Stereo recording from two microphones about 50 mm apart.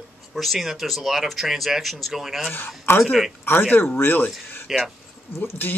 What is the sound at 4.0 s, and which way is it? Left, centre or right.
Speech, left.